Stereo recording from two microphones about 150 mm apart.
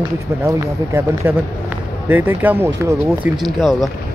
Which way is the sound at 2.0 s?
10° right (ahead or behind).